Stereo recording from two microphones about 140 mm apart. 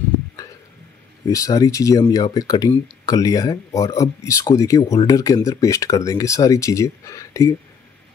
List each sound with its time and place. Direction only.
1.3 s speech: 25° left (ahead or behind)